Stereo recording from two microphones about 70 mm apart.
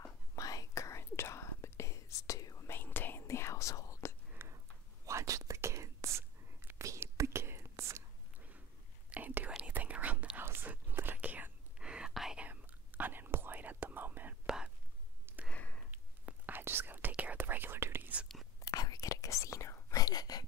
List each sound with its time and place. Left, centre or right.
0.4 s whispering: left
2.7 s whispering: left
3.3 s whispering: left
4.4 s a sound: right
5.0 s whispering: right
9.1 s whispering: right; by 12.4 s centre
12.4 s whispering: right
14.4 s whispering: centre
15.5 s sniff: centre
15.9 s whispering: right
18.6 s whispering: left